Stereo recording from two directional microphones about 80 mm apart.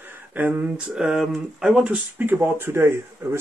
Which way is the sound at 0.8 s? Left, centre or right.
Centre.